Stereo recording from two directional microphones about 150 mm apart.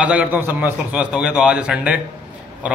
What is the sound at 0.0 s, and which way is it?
A man's voice, 10° right (ahead or behind).